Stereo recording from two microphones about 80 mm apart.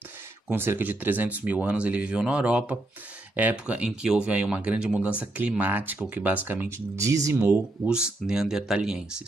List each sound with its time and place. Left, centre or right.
0.5 s speech: right
7.0 s speech: right
7.9 s speech: centre